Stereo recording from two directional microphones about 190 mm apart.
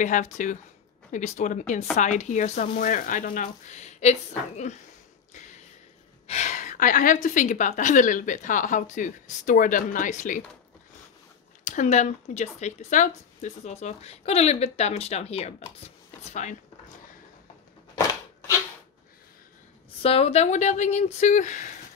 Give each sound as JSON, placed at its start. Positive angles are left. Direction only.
{"t": 0.0, "sound": "speech", "side_deg": 40}
{"t": 6.2, "sound": "a woman's voice", "side_deg": 35}
{"t": 11.6, "sound": "speech", "side_deg": 40}
{"t": 20.0, "sound": "speech", "side_deg": 30}